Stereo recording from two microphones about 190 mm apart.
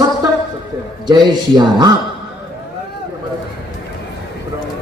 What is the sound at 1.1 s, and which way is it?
Speech, 25° right (ahead or behind).